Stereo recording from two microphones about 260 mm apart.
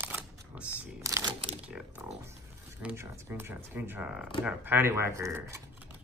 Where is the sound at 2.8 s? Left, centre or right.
Centre.